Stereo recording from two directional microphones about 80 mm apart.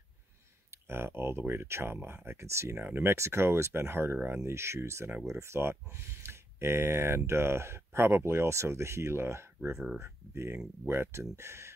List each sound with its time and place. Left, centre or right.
0.7 s speech: right